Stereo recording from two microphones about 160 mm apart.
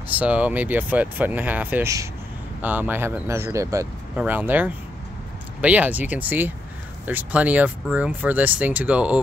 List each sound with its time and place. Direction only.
0.1 s speech: 10° right (ahead or behind)